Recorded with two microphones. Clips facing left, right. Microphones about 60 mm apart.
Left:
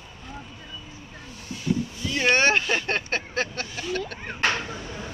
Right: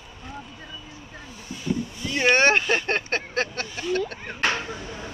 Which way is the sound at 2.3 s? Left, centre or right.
Right.